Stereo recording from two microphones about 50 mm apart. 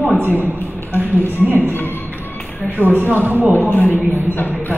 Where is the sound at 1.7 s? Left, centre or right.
Left.